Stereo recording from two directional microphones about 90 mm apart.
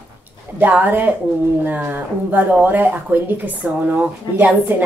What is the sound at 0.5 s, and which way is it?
A woman's voice, 20° right (ahead or behind).